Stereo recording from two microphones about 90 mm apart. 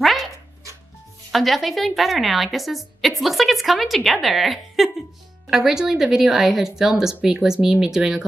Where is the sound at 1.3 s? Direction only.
Centre (ahead or behind).